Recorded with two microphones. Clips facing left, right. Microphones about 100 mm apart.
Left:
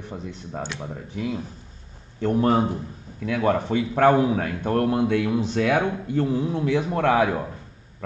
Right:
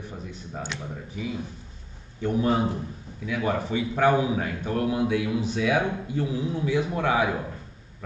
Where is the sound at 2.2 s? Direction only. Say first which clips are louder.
Left 4 dB; 60° left (ahead or behind).